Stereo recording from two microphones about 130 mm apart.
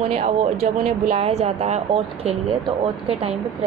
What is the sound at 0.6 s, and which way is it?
Speech, 65° right (ahead or behind).